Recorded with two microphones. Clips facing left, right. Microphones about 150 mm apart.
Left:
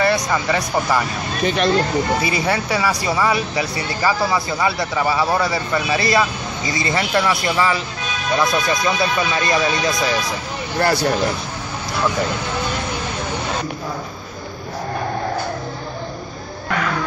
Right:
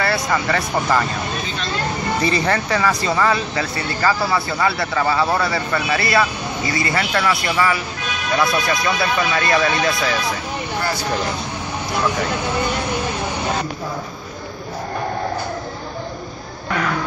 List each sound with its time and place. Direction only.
0.0 s speech: 15° left (ahead or behind)
1.4 s speech: 70° left (ahead or behind)
2.2 s speech: 10° left (ahead or behind)
10.8 s speech: 70° left (ahead or behind)